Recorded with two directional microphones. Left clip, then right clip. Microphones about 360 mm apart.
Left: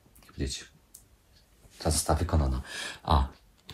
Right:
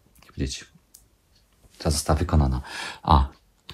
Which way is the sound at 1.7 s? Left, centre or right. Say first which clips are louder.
Right 3 dB; centre.